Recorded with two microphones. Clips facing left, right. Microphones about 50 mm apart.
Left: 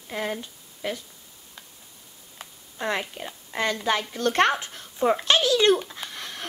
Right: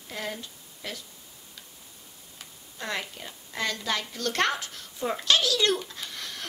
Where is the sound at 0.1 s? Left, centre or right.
Left.